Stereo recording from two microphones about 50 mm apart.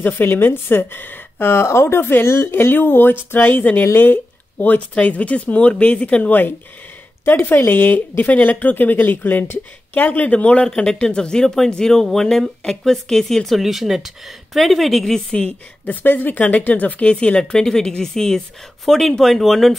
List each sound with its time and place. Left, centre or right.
0.0 s speech: left
1.7 s speech: left
2.0 s speech: left
7.2 s a woman's voice: left
10.7 s speech: centre
13.6 s a woman's voice: centre
15.1 s speech: centre
15.8 s a woman's voice: left; by 19.8 s centre